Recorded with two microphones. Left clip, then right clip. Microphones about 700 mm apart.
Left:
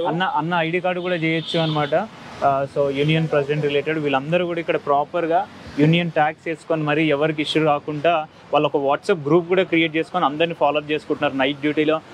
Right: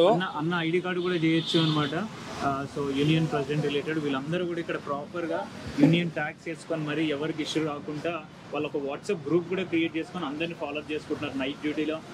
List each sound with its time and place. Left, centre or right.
0.2 s a man's voice: centre
3.1 s a man's voice: centre; by 12.0 s left